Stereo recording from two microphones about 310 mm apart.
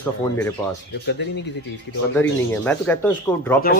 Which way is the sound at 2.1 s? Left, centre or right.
Centre.